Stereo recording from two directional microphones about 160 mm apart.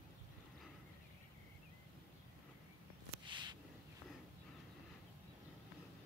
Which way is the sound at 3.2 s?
30° right (ahead or behind).